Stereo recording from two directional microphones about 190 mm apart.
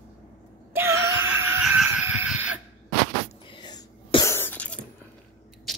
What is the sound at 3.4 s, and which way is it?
Cough, 25° left (ahead or behind).